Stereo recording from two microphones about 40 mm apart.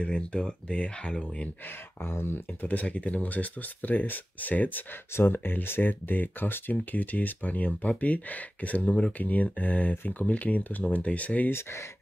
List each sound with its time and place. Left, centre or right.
0.0 s speech: left
2.0 s speech: left
2.6 s speech: left
5.1 s speech: left
8.8 s speech: left
9.2 s speech: left